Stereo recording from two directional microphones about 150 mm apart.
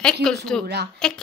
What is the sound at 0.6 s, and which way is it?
Speech, 90° right.